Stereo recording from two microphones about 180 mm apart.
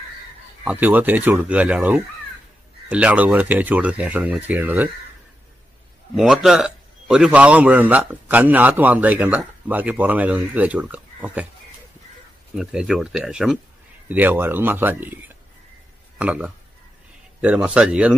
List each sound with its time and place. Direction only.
0.7 s a man's voice: 10° right (ahead or behind)
6.1 s a man's voice: centre (ahead or behind)
12.5 s a man's voice: 5° right (ahead or behind)